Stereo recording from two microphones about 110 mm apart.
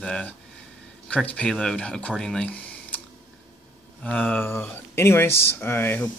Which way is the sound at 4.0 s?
15° left (ahead or behind).